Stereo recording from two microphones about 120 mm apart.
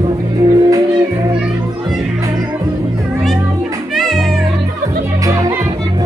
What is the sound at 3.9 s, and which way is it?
Music, centre (ahead or behind).